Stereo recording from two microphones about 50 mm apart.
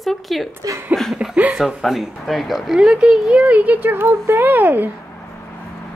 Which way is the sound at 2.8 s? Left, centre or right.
Centre.